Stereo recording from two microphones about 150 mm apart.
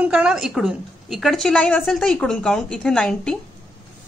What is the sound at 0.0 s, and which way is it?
A woman's voice, 5° right (ahead or behind).